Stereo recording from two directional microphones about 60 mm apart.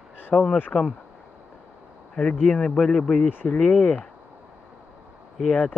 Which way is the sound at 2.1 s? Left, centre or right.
Centre.